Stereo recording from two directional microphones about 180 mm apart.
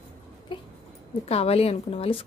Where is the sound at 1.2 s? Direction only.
35° left (ahead or behind).